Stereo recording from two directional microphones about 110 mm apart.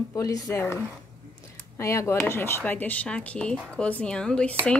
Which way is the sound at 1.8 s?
25° left (ahead or behind).